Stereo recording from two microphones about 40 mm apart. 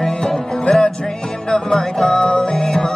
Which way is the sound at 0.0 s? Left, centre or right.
Centre.